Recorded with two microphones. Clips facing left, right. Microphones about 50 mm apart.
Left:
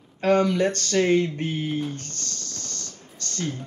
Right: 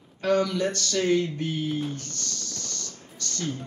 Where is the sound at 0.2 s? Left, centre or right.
Left.